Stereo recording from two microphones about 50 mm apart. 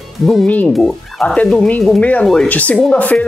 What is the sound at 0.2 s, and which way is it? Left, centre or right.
Speech, centre.